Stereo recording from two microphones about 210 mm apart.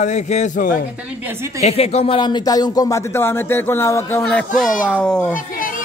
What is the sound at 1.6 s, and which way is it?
Speech, 30° left (ahead or behind).